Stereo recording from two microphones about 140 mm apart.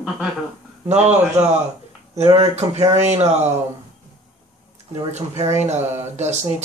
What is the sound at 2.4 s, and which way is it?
Speech, 50° right (ahead or behind).